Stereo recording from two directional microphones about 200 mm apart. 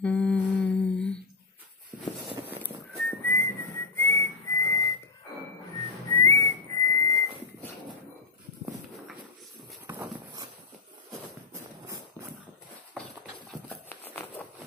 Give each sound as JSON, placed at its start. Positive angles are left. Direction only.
{"t": 0.0, "sound": "humming", "side_deg": 5}
{"t": 2.6, "sound": "whistling", "side_deg": 10}
{"t": 6.1, "sound": "whistling", "side_deg": 15}
{"t": 9.8, "sound": "dog", "side_deg": -10}
{"t": 13.8, "sound": "a sound", "side_deg": 10}